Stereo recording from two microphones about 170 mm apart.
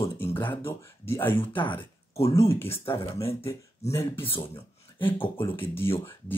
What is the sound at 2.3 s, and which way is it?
Speech, 15° left (ahead or behind).